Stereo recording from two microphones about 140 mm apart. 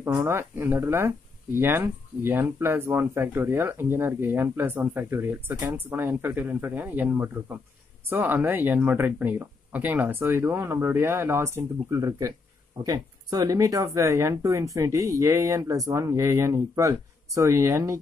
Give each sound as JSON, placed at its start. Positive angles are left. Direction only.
{"t": 0.0, "sound": "speech", "side_deg": -20}